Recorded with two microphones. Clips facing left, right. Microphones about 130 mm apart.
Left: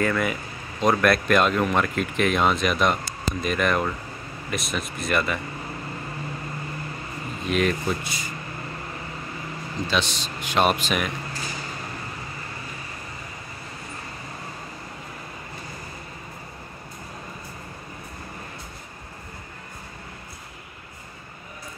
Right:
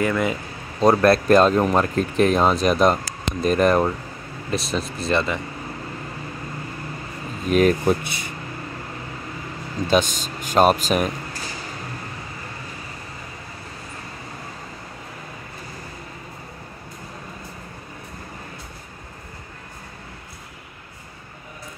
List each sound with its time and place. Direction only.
0.0 s speech: 20° right (ahead or behind)
0.7 s speech: 30° right (ahead or behind)
7.4 s speech: 45° right (ahead or behind); by 8.3 s 60° right (ahead or behind)
9.8 s speech: 45° right (ahead or behind)